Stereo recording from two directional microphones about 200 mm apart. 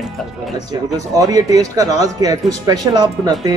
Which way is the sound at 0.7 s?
15° right (ahead or behind).